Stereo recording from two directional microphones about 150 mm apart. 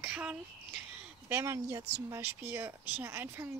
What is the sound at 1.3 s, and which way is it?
Speech, 20° right (ahead or behind).